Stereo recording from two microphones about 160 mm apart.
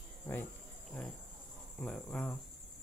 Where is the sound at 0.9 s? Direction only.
10° left (ahead or behind).